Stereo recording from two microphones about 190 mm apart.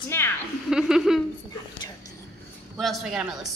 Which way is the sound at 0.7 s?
5° right (ahead or behind).